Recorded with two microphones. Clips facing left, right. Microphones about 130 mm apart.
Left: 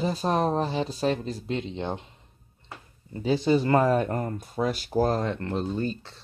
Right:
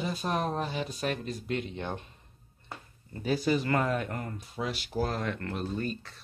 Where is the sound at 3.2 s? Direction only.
25° left (ahead or behind).